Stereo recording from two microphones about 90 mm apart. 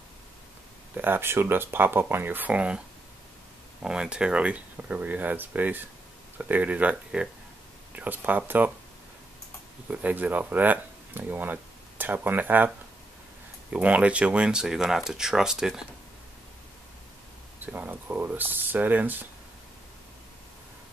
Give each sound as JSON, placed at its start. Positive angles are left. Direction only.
{"t": 0.9, "sound": "speech", "side_deg": -25}
{"t": 3.8, "sound": "speech", "side_deg": -10}
{"t": 9.8, "sound": "speech", "side_deg": -15}
{"t": 17.6, "sound": "speech", "side_deg": -20}